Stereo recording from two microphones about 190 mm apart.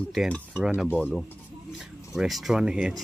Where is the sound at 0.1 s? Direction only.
Centre (ahead or behind).